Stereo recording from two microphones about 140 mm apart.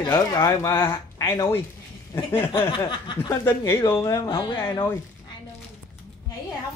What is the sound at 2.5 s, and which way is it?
Snicker, 35° left (ahead or behind).